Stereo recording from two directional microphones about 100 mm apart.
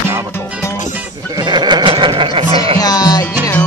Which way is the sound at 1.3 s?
45° right (ahead or behind).